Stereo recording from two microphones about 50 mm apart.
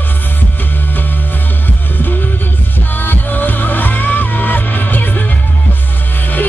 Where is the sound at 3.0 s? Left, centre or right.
Left.